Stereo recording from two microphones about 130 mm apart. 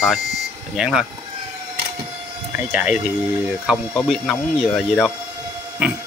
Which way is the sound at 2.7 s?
10° right (ahead or behind).